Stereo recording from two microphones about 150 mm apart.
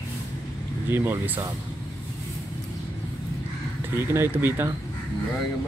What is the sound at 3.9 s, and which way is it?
Speech, 15° right (ahead or behind).